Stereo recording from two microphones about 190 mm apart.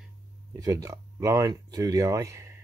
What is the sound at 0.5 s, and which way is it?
Speech, 20° right (ahead or behind).